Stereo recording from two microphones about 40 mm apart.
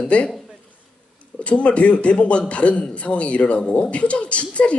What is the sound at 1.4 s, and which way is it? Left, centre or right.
A man's voice, left.